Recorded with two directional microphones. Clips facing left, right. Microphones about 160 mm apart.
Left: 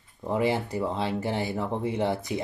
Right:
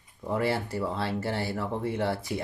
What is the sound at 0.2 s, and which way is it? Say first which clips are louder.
Speech: left 2 dB; 20° left (ahead or behind).